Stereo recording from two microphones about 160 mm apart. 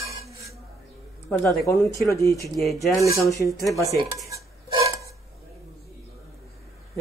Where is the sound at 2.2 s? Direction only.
20° left (ahead or behind).